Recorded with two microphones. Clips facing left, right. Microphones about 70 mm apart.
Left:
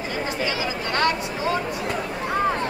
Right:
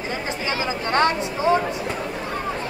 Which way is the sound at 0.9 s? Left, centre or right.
Right.